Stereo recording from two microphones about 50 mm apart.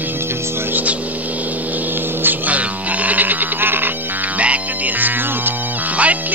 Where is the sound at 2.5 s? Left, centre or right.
Right.